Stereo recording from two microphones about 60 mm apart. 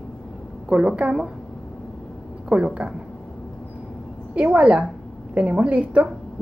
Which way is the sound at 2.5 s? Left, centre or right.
Centre.